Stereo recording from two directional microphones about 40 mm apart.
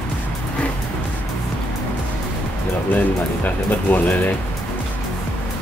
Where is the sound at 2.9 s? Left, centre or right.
Left.